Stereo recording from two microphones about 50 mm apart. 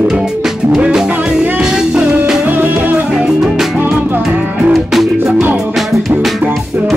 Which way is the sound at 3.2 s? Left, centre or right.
Centre.